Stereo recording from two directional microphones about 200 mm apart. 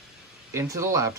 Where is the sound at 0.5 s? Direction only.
15° right (ahead or behind).